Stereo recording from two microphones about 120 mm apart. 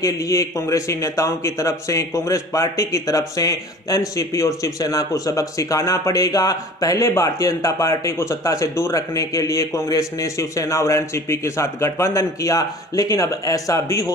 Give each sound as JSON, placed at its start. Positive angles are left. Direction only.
{"t": 0.0, "sound": "a man's voice", "side_deg": 25}